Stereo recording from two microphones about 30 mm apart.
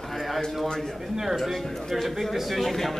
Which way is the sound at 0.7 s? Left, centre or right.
Centre.